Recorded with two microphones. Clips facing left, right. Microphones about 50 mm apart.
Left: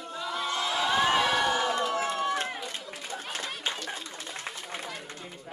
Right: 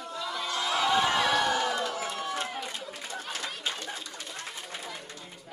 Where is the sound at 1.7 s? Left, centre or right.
Left.